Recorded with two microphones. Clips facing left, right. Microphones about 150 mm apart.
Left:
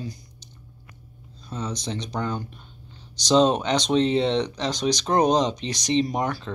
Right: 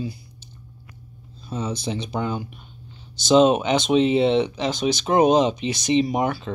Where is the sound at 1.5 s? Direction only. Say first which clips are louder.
Right 3 dB; 5° right (ahead or behind).